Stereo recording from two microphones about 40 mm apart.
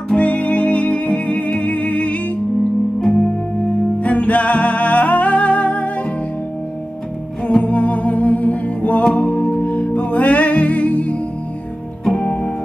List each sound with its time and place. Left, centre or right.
0.1 s music: left
3.1 s music: left
4.0 s music: left
7.6 s music: left
12.2 s music: left